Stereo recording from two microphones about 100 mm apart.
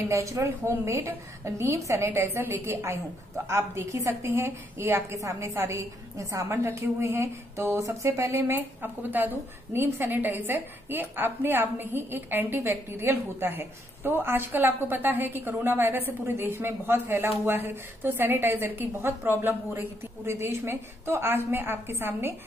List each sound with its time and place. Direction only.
0.0 s a woman's voice: 30° right (ahead or behind)